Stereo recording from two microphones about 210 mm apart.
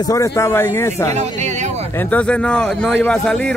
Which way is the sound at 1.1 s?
35° right (ahead or behind).